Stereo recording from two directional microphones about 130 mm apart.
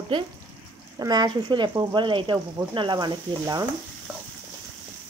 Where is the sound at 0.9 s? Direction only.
30° right (ahead or behind).